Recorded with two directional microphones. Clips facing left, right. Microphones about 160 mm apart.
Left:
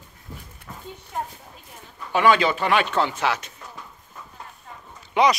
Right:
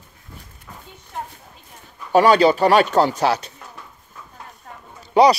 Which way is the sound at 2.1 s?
40° right (ahead or behind).